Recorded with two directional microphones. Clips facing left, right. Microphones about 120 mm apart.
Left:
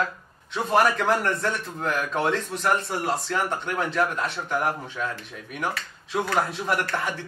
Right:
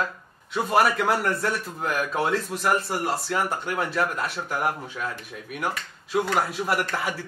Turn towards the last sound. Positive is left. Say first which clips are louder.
# even
turn(degrees=-5)  # may be behind; listen again after turning